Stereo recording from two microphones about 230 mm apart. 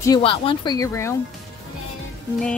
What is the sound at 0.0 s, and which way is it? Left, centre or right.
Speech, centre.